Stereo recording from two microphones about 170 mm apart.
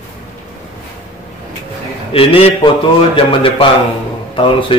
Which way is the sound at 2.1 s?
35° left (ahead or behind).